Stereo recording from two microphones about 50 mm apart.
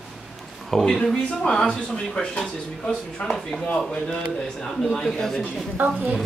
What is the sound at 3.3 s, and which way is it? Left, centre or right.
Speech, centre.